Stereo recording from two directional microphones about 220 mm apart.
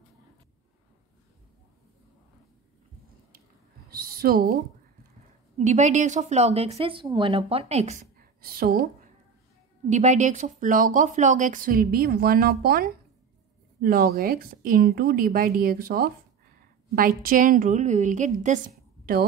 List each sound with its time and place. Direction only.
3.9 s a sound: 40° right (ahead or behind)
5.6 s a woman's voice: 35° right (ahead or behind)
9.8 s a woman's voice: 35° right (ahead or behind)